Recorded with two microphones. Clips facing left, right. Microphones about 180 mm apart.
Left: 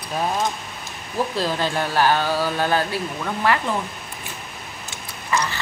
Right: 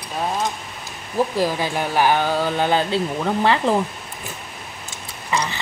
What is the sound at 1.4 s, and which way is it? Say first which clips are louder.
Speech: right 2 dB; 15° right (ahead or behind).